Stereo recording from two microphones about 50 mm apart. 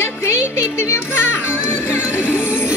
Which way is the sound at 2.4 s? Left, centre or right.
Left.